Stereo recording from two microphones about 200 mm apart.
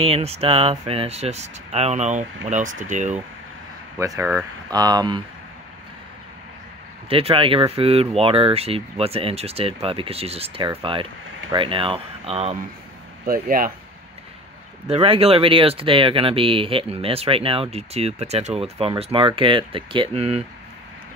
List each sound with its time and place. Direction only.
0.0 s speech: 30° right (ahead or behind)
4.0 s speech: 15° right (ahead or behind)
7.1 s speech: 30° right (ahead or behind)
13.2 s speech: 45° right (ahead or behind)
14.9 s speech: 30° right (ahead or behind)